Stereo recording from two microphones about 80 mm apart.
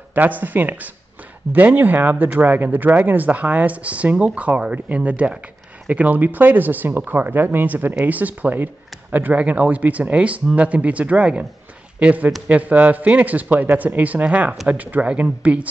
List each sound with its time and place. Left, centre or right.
0.1 s speech: right